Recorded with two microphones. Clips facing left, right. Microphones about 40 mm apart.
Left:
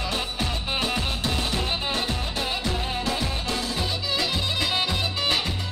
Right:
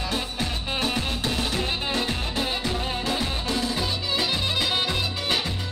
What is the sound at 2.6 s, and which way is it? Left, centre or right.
Music, right.